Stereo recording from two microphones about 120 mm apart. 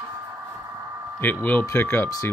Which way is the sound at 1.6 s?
20° left (ahead or behind).